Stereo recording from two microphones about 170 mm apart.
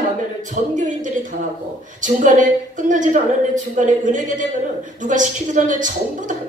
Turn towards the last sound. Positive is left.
turn(degrees=-50)  # may be behind; listen again after turning